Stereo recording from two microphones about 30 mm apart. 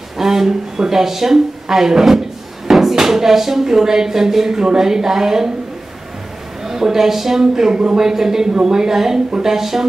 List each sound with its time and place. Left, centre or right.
0.2 s speech: centre
6.6 s speech: centre